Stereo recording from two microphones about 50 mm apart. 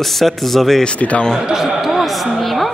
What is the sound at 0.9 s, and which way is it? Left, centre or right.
Speech, left.